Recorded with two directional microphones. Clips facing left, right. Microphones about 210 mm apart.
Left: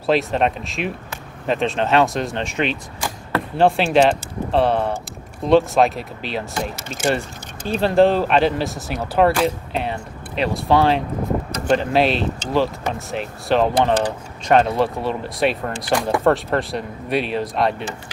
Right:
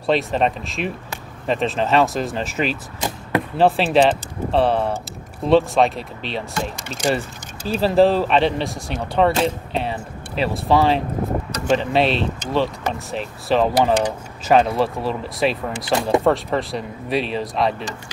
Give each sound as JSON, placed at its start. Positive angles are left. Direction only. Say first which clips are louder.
{"t": 0.0, "sound": "speech", "louder": "left 1 dB", "side_deg": 0}
{"t": 3.0, "sound": "arrow", "louder": "right 4 dB", "side_deg": -15}
{"t": 3.5, "sound": "speech", "louder": "left 1 dB", "side_deg": 0}